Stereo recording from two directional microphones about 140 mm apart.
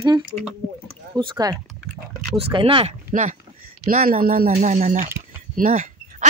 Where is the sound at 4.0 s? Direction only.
90° right.